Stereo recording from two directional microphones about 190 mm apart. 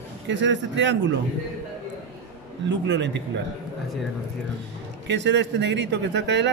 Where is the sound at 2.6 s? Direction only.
70° right (ahead or behind).